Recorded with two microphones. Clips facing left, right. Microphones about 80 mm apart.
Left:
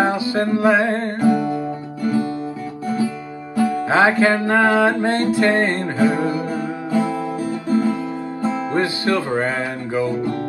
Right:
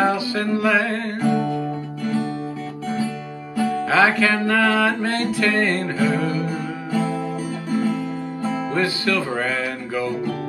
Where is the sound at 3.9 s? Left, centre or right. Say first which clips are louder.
Left 2 dB; left.